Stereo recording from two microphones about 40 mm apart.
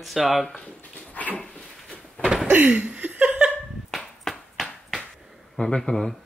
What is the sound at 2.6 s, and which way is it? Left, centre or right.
Chuckle, right.